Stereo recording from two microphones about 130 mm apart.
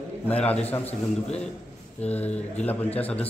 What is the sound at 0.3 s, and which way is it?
Speech, 10° left (ahead or behind).